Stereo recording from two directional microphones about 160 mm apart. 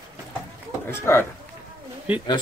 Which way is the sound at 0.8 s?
15° left (ahead or behind).